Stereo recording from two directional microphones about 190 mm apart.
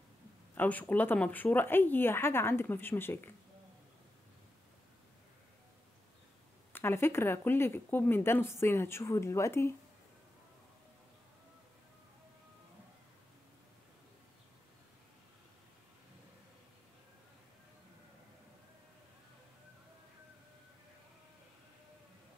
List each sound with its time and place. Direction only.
0.6 s speech: 10° left (ahead or behind)
6.7 s speech: 10° left (ahead or behind)